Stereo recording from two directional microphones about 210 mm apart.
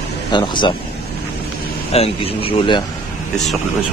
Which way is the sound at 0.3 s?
20° left (ahead or behind).